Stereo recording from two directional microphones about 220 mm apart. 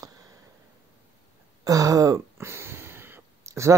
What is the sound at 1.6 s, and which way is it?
Speech, 15° right (ahead or behind).